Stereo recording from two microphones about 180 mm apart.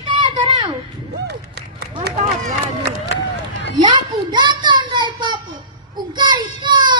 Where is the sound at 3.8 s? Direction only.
25° right (ahead or behind).